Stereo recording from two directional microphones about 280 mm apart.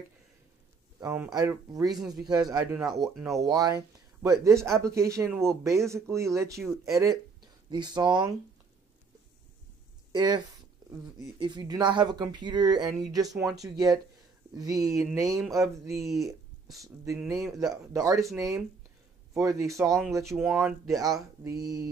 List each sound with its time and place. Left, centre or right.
0.9 s speech: centre
1.9 s speech: centre
2.2 s speech: centre
3.3 s speech: centre
10.1 s speech: centre
10.8 s a sound: centre
11.3 s speech: centre
13.3 s speech: centre
13.6 s speech: centre
16.0 s speech: centre
16.7 s speech: centre
19.9 s speech: centre